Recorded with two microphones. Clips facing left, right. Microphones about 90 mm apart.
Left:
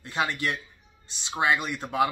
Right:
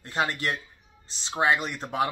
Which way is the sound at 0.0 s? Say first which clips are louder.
Even; 35° right (ahead or behind).